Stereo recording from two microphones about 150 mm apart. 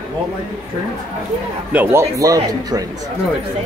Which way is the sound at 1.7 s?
10° right (ahead or behind).